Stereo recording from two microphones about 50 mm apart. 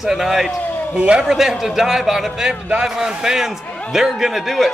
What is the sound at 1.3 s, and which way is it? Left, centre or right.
A man's voice, centre.